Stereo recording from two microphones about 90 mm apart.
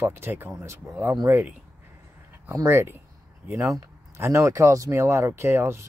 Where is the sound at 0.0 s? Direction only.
25° right (ahead or behind).